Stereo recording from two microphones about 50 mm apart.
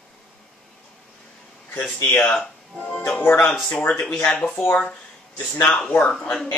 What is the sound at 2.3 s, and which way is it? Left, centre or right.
Speech, centre.